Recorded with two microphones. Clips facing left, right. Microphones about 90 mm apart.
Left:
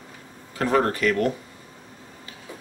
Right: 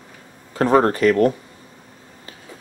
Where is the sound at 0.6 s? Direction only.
35° right (ahead or behind).